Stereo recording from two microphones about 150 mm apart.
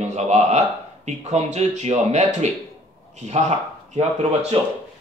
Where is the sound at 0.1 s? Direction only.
50° right (ahead or behind).